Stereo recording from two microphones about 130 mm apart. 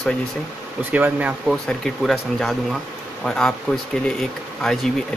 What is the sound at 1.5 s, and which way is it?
Speech, centre (ahead or behind).